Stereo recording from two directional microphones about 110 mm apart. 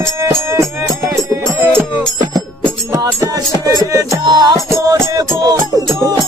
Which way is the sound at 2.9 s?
35° right (ahead or behind).